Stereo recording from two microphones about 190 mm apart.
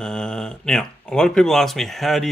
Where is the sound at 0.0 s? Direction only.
5° left (ahead or behind).